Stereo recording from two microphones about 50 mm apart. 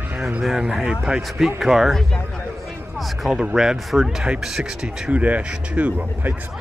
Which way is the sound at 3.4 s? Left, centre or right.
Centre.